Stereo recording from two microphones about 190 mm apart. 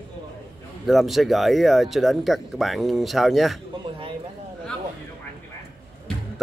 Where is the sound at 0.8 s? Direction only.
Centre (ahead or behind).